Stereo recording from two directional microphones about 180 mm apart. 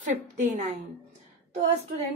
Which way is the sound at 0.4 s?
40° right (ahead or behind).